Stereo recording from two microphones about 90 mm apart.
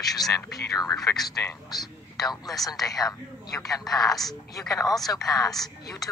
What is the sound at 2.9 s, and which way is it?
Speech, 45° left (ahead or behind).